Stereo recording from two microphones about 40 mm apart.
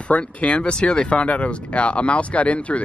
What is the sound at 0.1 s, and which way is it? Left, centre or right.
Speech, left.